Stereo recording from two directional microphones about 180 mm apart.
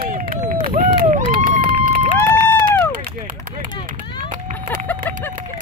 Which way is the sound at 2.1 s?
10° left (ahead or behind).